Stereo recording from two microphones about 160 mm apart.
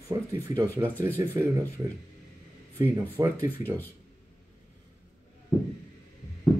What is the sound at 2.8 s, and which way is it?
Speech, 15° right (ahead or behind).